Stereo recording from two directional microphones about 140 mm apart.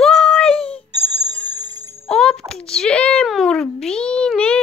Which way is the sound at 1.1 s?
25° right (ahead or behind).